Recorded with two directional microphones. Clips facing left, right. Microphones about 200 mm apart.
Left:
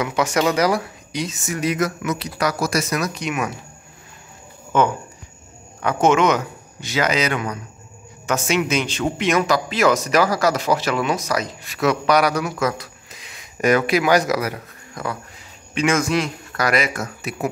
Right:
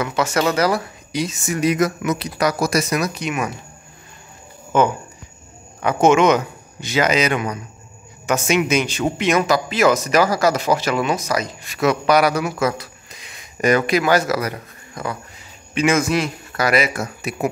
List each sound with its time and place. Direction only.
0.0 s speech: 15° left (ahead or behind)
1.1 s speech: 10° right (ahead or behind)
2.9 s a man's voice: 5° right (ahead or behind)
4.7 s a man's voice: 5° right (ahead or behind)
6.2 s a man's voice: 20° right (ahead or behind)